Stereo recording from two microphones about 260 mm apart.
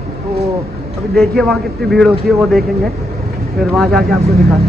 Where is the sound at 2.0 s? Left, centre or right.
Centre.